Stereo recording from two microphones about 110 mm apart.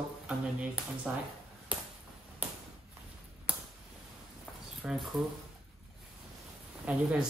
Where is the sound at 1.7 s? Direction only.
10° right (ahead or behind).